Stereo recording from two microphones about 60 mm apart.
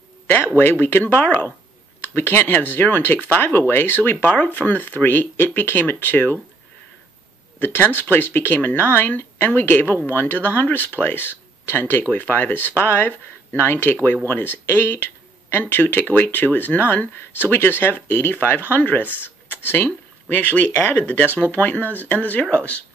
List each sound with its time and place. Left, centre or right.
0.6 s speech: left
7.5 s speech: left